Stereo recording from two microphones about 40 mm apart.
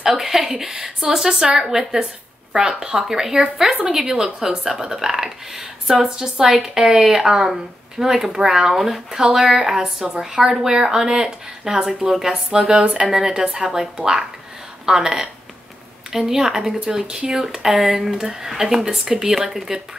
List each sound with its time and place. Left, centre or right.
0.0 s speech: centre